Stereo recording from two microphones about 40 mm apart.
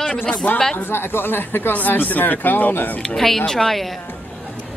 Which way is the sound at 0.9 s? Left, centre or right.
Left.